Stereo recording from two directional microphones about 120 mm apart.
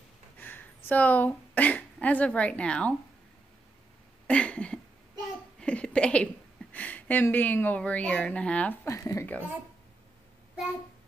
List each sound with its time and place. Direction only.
0.4 s a woman's voice: 15° left (ahead or behind)
4.3 s a sound: 10° left (ahead or behind)
6.7 s speech: 15° left (ahead or behind)
8.8 s speech: 25° left (ahead or behind)